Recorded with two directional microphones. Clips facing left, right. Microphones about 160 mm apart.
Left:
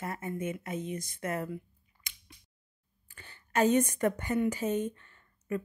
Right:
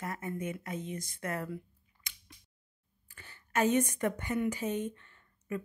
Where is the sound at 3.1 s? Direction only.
30° left (ahead or behind).